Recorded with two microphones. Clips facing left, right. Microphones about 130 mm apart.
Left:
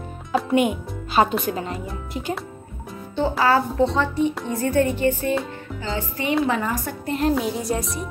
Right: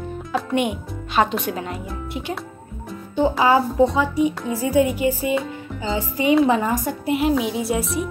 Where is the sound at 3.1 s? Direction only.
15° right (ahead or behind).